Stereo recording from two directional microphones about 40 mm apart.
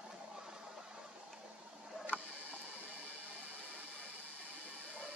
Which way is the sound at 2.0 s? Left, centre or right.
Right.